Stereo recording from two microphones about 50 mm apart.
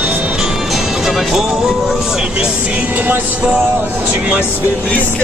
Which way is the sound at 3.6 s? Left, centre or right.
Right.